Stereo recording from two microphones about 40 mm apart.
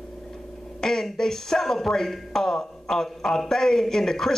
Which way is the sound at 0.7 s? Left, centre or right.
Centre.